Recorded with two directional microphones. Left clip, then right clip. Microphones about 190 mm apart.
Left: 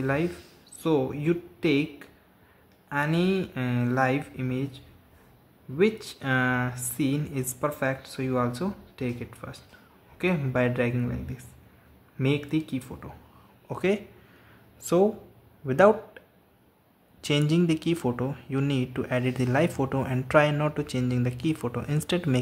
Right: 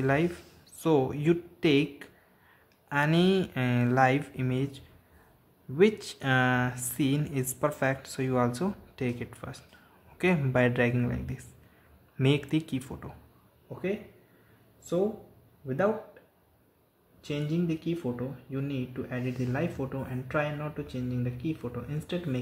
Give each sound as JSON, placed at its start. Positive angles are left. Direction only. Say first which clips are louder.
{"t": 0.0, "sound": "speech", "louder": "even", "side_deg": 0}
{"t": 5.8, "sound": "speech", "louder": "even", "side_deg": 0}
{"t": 13.7, "sound": "speech", "louder": "left 7 dB", "side_deg": 30}
{"t": 15.6, "sound": "speech", "louder": "left 9 dB", "side_deg": 30}
{"t": 17.2, "sound": "speech", "louder": "left 8 dB", "side_deg": 25}